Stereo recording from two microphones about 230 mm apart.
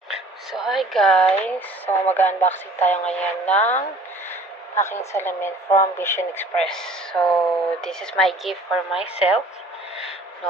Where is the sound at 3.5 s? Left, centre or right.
Left.